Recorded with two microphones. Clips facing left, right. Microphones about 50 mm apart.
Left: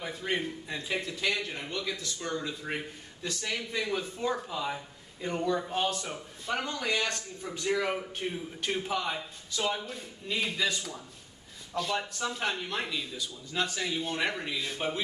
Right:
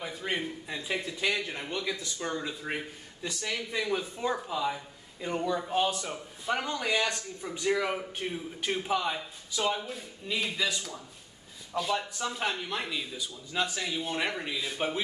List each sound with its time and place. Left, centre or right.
0.0 s a man's voice: centre
4.4 s a man's voice: centre
7.0 s speech: right
7.7 s a man's voice: centre
11.7 s a man's voice: centre